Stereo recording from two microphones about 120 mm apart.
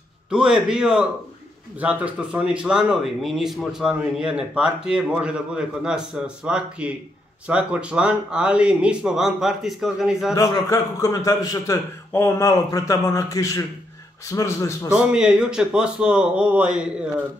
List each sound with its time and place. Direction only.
0.3 s speech: 5° right (ahead or behind)
10.3 s a man's voice: 30° left (ahead or behind)
15.0 s speech: 5° right (ahead or behind)